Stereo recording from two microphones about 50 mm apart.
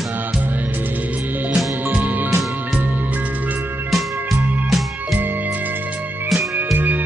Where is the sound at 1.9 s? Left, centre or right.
Right.